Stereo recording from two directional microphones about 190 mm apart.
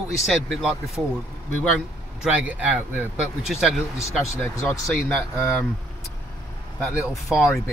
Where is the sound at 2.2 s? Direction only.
5° right (ahead or behind).